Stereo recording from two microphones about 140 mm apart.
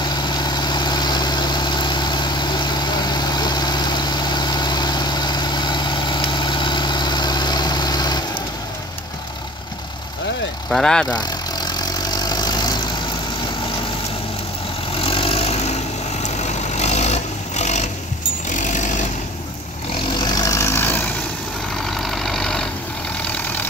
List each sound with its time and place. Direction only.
0.0 s vehicle: 30° left (ahead or behind)
10.7 s speech: 5° left (ahead or behind)
11.1 s vehicle: 30° left (ahead or behind)
15.0 s vehicle: 40° left (ahead or behind)
18.5 s jackhammer: 60° left (ahead or behind)
20.2 s vehicle: 30° left (ahead or behind)
21.9 s vehicle: centre (ahead or behind)